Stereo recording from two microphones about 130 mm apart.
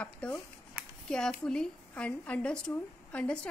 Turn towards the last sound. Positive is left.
turn(degrees=10)  # may be behind; listen again after turning